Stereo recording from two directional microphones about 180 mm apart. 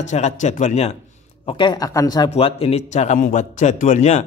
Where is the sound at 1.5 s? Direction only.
25° left (ahead or behind).